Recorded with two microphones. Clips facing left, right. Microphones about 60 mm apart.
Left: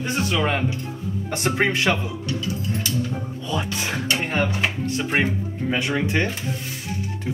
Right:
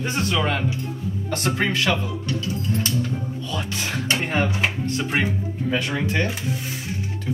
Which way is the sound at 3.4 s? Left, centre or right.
Centre.